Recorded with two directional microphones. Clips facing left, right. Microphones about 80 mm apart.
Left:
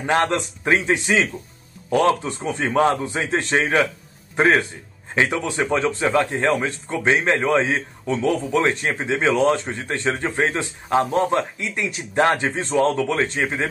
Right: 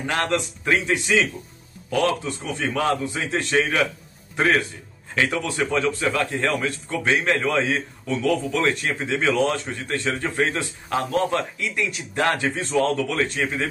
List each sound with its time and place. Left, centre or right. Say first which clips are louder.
0.0 s a man's voice: left 4 dB; left